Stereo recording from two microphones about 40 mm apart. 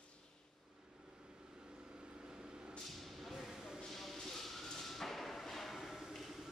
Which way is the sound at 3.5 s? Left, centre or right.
Centre.